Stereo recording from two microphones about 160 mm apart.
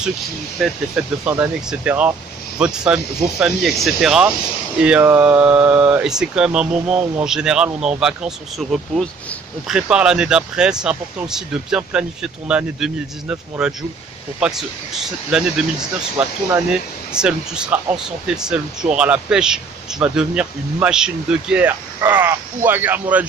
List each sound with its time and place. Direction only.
0.6 s speech: 5° right (ahead or behind)
15.0 s speech: 5° right (ahead or behind)